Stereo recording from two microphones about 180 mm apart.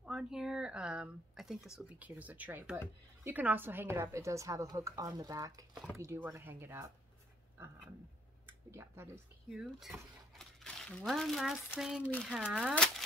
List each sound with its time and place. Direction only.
0.0 s speech: 5° right (ahead or behind)
8.5 s speech: 15° right (ahead or behind)
9.5 s speech: centre (ahead or behind)